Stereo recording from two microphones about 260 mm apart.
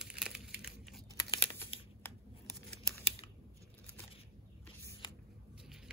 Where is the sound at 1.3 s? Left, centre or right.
Centre.